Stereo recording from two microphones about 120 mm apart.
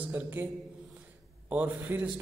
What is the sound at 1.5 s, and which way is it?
Speech, 15° right (ahead or behind).